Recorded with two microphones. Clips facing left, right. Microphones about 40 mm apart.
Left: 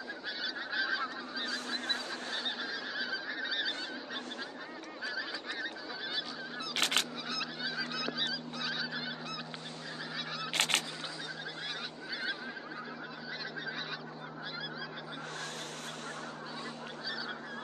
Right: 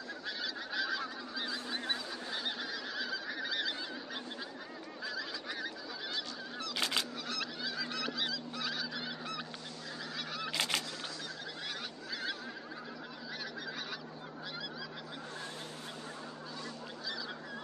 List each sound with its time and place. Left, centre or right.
0.3 s goose: centre
5.5 s goose: centre
6.7 s honk: left
7.2 s goose: centre
10.5 s honk: left
12.1 s goose: centre
13.4 s goose: centre